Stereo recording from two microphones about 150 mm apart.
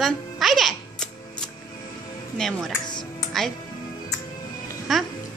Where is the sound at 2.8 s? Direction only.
30° left (ahead or behind).